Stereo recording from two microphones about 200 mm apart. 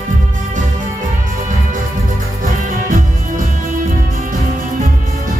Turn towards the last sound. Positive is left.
turn(degrees=-40)  # may be behind; listen again after turning